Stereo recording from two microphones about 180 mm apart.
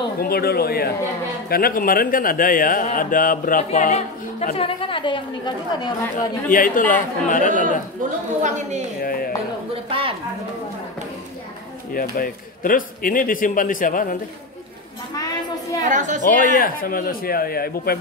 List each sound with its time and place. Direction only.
0.2 s a man's voice: 60° left (ahead or behind); by 5.9 s 25° left (ahead or behind)
6.5 s speech: 50° left (ahead or behind)
8.4 s a woman's voice: 40° right (ahead or behind)
9.0 s a sound: 55° left (ahead or behind)
9.8 s a sound: 30° right (ahead or behind)
11.9 s speech: 50° left (ahead or behind)
15.1 s a sound: 20° left (ahead or behind)
15.8 s a woman's voice: 45° right (ahead or behind)
16.2 s a man's voice: 45° left (ahead or behind)